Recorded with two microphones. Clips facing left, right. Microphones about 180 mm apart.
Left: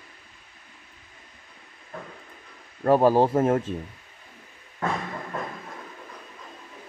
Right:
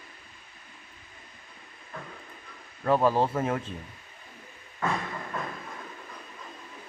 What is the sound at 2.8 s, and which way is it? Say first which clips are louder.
Speech: left 5 dB; 40° left (ahead or behind).